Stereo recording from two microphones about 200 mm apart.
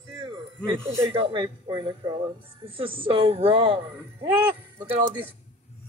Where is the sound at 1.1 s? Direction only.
25° right (ahead or behind).